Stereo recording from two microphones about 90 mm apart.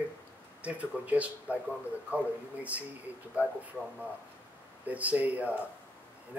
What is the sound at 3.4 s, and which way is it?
Speech, 15° right (ahead or behind).